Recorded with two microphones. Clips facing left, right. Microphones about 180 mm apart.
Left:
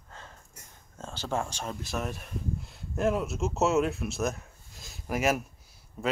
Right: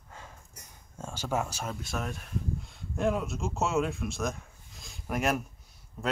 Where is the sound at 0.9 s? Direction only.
10° right (ahead or behind).